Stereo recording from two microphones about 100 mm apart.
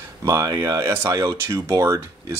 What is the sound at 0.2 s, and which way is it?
Speech, 35° right (ahead or behind).